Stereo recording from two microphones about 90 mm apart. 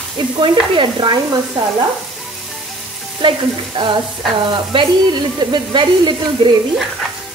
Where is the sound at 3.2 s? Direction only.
65° right (ahead or behind).